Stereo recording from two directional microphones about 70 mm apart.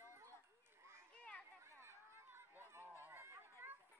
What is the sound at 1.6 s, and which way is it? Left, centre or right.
Chatter, right.